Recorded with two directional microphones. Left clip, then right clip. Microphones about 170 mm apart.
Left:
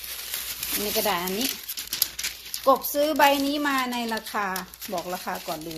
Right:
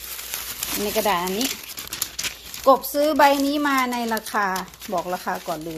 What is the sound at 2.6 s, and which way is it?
A woman's voice, 20° right (ahead or behind).